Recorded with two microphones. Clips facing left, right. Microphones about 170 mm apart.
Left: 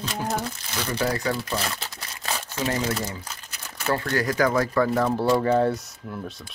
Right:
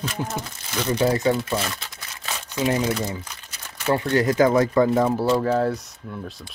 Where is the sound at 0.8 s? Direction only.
25° right (ahead or behind).